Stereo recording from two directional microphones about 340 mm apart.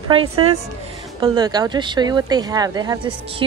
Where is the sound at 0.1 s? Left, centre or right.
Centre.